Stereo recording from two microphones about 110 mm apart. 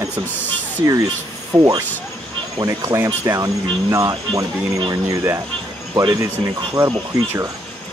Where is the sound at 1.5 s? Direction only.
40° right (ahead or behind).